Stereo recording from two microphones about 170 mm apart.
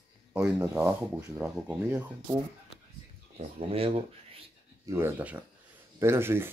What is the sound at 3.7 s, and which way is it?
Speech, 35° right (ahead or behind).